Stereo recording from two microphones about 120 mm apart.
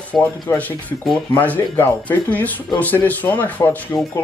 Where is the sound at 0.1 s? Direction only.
15° left (ahead or behind).